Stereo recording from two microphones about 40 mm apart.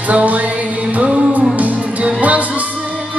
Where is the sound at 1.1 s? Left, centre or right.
Right.